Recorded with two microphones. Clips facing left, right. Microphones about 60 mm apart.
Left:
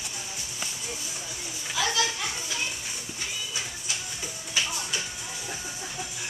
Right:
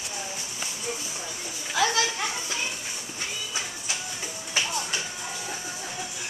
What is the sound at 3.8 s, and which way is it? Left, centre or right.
Music, right.